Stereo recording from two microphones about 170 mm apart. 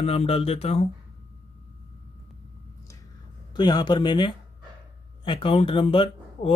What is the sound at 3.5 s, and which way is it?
Speech, 25° left (ahead or behind).